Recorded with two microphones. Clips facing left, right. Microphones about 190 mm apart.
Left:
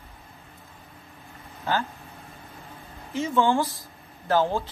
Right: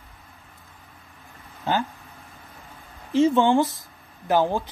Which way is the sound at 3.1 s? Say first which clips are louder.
Right 6 dB; 30° right (ahead or behind).